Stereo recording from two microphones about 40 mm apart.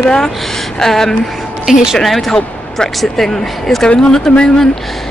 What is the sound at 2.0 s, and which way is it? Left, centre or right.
Speech, centre.